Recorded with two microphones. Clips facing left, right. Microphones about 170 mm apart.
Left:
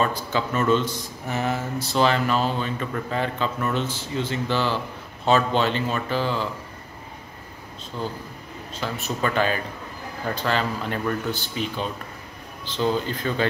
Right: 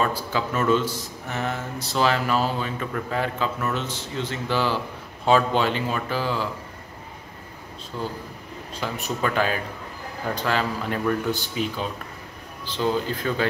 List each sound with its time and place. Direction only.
0.0 s a man's voice: 5° right (ahead or behind)
1.3 s speech: 5° left (ahead or behind)
4.5 s a man's voice: 10° right (ahead or behind)
8.8 s a man's voice: 15° right (ahead or behind)
9.2 s a man's voice: 5° right (ahead or behind)
12.7 s a man's voice: 5° right (ahead or behind)